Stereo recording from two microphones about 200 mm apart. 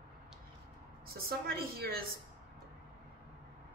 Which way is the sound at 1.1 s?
50° right (ahead or behind).